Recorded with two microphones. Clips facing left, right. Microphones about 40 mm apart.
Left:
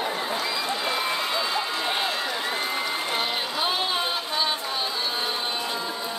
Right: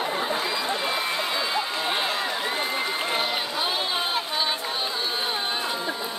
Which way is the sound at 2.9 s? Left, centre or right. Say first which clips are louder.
Right 1 dB; centre.